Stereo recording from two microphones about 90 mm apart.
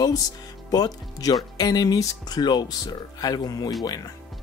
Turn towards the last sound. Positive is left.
turn(degrees=45)  # may be behind; listen again after turning